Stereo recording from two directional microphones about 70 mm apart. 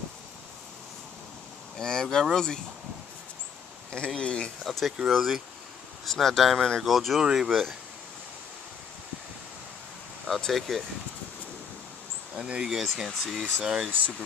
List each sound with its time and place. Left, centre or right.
1.8 s speech: centre
3.9 s speech: centre
4.6 s speech: centre
10.2 s speech: centre
12.4 s speech: centre
12.7 s speech: centre